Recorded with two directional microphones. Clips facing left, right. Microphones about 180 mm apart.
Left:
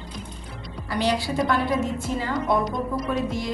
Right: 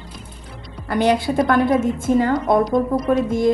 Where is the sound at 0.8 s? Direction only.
55° right (ahead or behind).